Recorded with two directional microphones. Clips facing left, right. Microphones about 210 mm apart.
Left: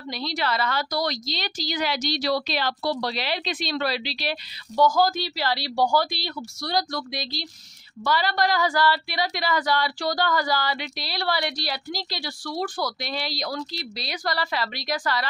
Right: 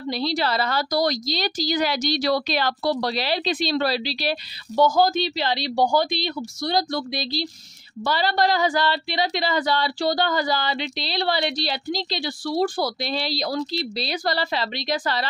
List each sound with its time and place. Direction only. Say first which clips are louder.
0.1 s a woman's voice: right 4 dB; 30° right (ahead or behind)
4.7 s speech: right 2 dB; 25° right (ahead or behind)